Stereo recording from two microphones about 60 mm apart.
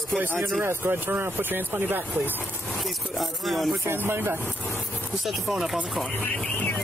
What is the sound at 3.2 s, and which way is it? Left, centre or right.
Speech, centre.